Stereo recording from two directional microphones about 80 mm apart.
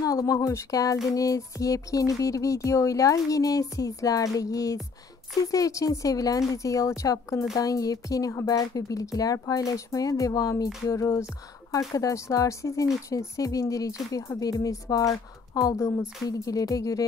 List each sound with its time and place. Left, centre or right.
0.0 s speech: left
15.7 s speech: left
16.3 s speech: left